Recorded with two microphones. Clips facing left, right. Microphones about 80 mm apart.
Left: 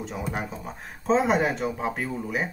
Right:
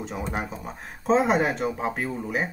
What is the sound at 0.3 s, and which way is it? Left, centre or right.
Speech, centre.